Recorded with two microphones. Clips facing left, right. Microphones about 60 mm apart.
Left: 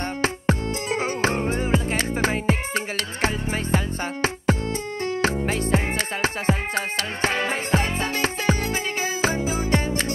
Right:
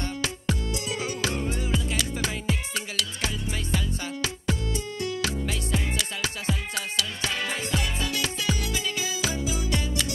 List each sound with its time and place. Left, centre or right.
0.2 s music: left